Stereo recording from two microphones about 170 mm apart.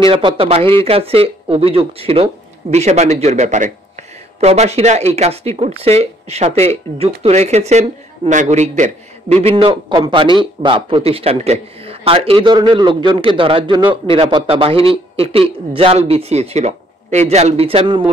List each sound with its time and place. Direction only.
0.0 s a man's voice: 30° right (ahead or behind)